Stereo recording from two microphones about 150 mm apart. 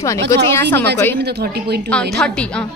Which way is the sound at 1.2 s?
90° right.